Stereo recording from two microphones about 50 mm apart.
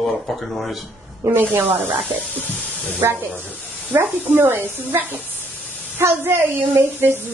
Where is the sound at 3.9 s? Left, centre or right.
Right.